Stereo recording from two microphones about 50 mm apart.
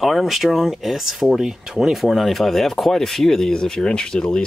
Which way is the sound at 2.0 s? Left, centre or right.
Centre.